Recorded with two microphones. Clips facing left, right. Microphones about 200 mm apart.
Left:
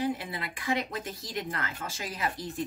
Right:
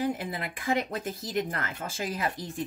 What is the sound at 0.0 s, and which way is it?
Speech, 50° right (ahead or behind).